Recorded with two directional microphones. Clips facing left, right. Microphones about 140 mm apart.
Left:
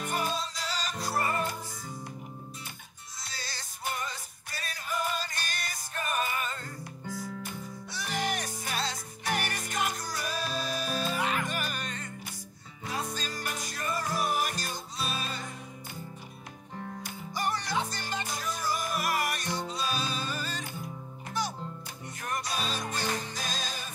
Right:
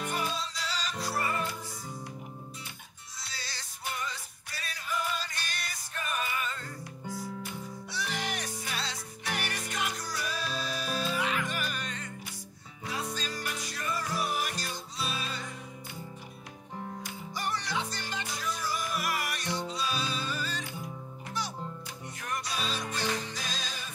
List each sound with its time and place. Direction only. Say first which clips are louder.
0.0 s music: left 2 dB; 45° left (ahead or behind)
3.2 s music: left 1 dB; 45° left (ahead or behind)
17.0 s music: left 6 dB; 45° left (ahead or behind)